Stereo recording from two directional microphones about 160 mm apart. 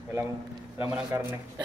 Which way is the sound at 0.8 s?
15° right (ahead or behind).